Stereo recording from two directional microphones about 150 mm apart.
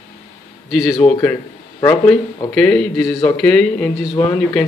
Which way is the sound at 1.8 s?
10° left (ahead or behind).